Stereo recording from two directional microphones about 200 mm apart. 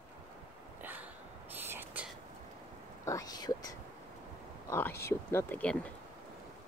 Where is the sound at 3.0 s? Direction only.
15° left (ahead or behind).